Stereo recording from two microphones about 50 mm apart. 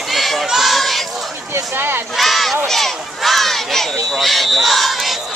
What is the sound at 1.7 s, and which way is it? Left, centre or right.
Crowd, right.